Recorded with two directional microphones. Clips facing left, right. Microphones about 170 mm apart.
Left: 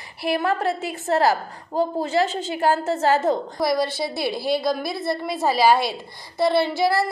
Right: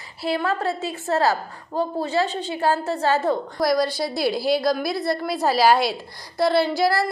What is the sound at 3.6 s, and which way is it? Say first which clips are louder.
A woman's voice: right 1 dB; centre (ahead or behind).